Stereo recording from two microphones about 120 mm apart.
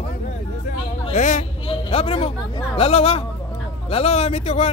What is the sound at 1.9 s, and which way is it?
Speech, 55° left (ahead or behind).